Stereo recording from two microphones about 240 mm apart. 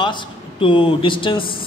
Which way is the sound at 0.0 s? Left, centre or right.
Centre.